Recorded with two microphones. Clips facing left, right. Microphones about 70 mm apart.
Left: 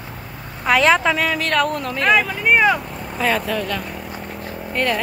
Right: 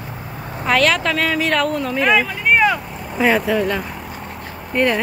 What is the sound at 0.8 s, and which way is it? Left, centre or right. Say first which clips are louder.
Speech: left 3 dB; centre.